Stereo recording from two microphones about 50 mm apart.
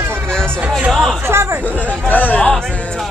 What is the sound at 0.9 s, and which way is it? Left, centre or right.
Speech, centre.